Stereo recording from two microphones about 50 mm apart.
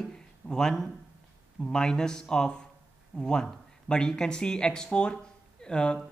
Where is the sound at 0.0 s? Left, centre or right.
Centre.